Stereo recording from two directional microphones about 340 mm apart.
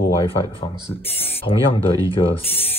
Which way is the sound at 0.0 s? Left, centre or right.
Centre.